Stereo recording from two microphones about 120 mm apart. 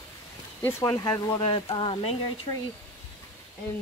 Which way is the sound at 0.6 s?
25° left (ahead or behind).